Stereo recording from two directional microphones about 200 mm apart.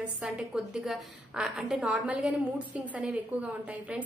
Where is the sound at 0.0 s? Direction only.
5° right (ahead or behind).